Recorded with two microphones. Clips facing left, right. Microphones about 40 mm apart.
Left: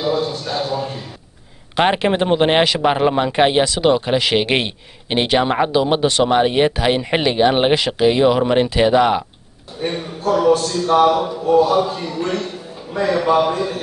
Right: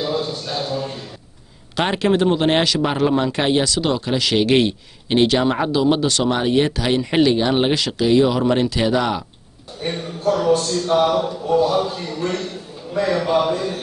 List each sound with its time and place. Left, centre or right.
0.0 s a man's voice: centre
1.8 s a man's voice: left
9.8 s a man's voice: centre